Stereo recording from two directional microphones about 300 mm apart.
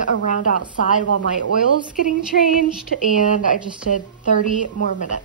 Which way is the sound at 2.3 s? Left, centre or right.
Left.